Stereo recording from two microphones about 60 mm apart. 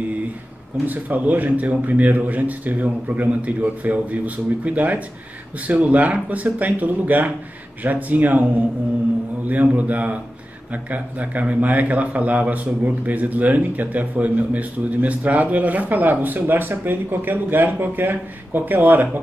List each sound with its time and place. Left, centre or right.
0.8 s a man's voice: right